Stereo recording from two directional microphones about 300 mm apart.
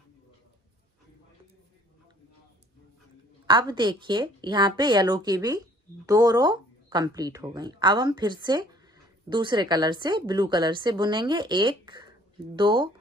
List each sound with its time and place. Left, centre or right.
3.4 s a woman's voice: centre